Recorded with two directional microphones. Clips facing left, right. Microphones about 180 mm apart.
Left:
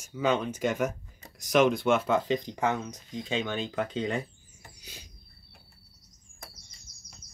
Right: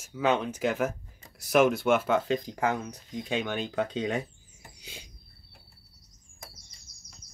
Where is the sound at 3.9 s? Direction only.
15° right (ahead or behind).